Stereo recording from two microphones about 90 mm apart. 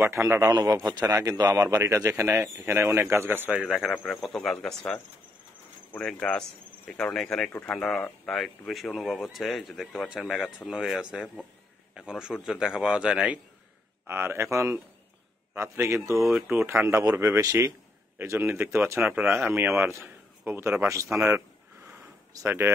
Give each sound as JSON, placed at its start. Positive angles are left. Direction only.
{"t": 0.0, "sound": "speech", "side_deg": -30}
{"t": 0.5, "sound": "a man's voice", "side_deg": -40}
{"t": 3.9, "sound": "a man's voice", "side_deg": 10}
{"t": 14.0, "sound": "speech", "side_deg": -30}
{"t": 18.9, "sound": "a man's voice", "side_deg": -10}
{"t": 19.8, "sound": "a man's voice", "side_deg": -25}
{"t": 22.3, "sound": "speech", "side_deg": -30}